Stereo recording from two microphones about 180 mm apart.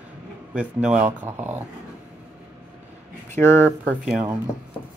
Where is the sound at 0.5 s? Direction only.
10° right (ahead or behind).